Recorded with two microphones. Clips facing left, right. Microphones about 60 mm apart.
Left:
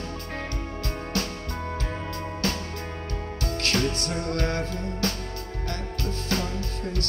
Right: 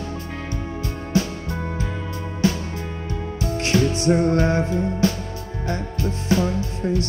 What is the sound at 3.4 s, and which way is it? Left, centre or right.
Music, centre.